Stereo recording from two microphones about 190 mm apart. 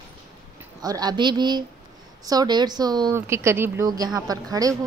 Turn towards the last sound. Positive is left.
turn(degrees=-20)  # may be behind; listen again after turning